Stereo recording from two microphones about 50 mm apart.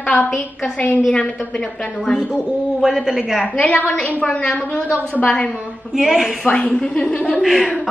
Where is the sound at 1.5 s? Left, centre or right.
Centre.